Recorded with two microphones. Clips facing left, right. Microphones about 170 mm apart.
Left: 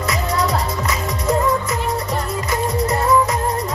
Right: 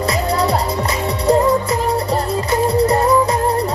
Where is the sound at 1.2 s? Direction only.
30° right (ahead or behind).